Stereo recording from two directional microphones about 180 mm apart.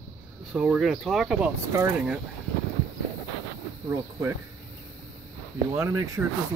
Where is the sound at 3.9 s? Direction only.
15° right (ahead or behind).